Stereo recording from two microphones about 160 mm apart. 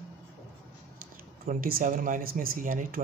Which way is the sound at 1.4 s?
60° right (ahead or behind).